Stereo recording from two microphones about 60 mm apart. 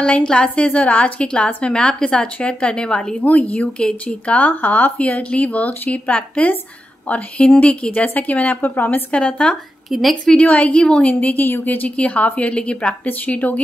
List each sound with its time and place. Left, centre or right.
0.0 s a woman's voice: centre
3.3 s a woman's voice: left
9.8 s a woman's voice: centre
10.2 s a woman's voice: centre